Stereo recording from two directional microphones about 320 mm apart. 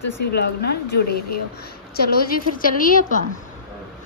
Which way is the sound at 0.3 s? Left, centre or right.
Left.